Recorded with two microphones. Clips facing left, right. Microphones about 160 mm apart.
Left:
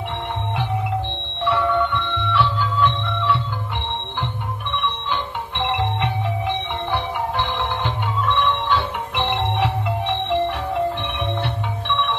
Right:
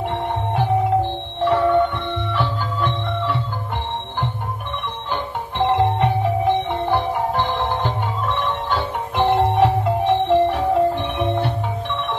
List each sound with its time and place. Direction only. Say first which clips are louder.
1.4 s music: right 4 dB; 45° right (ahead or behind)
3.2 s organ: left 3 dB; 45° right (ahead or behind)
4.8 s music: even; 40° right (ahead or behind)